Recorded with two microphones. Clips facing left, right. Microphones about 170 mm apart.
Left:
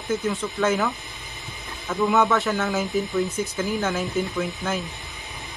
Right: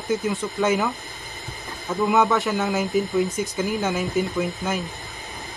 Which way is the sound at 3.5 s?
15° right (ahead or behind).